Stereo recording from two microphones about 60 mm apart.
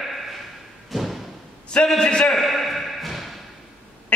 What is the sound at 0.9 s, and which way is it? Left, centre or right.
Thump, centre.